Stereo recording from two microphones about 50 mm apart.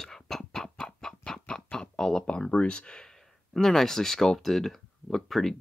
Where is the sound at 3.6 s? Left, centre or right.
Centre.